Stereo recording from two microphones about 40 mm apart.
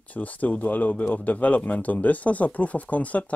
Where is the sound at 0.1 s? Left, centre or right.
Left.